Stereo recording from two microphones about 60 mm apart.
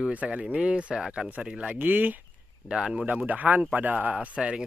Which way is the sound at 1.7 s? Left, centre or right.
Right.